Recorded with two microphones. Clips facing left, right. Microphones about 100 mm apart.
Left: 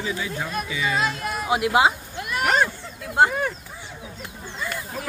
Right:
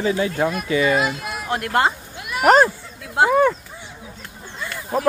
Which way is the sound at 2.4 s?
40° right (ahead or behind).